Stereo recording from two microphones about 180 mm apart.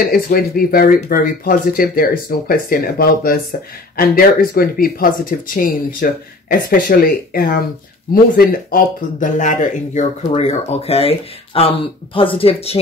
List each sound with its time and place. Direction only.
0.1 s speech: 55° left (ahead or behind); by 12.8 s 35° left (ahead or behind)